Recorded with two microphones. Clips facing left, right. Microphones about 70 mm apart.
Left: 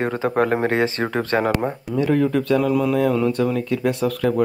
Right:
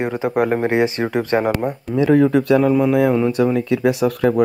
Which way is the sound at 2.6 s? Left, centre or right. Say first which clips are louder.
Right 4 dB; right.